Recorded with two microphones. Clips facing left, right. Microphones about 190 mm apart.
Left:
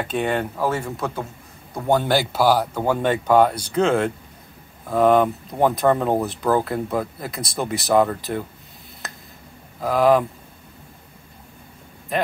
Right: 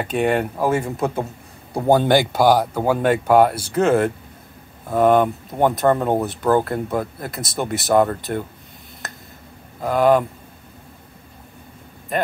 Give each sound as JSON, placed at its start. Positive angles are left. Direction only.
{"t": 0.0, "sound": "speech", "side_deg": -10}
{"t": 2.6, "sound": "speech", "side_deg": -10}
{"t": 9.8, "sound": "speech", "side_deg": 0}